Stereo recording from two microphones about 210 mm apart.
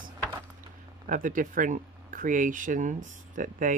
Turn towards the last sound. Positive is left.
turn(degrees=-40)  # may be behind; listen again after turning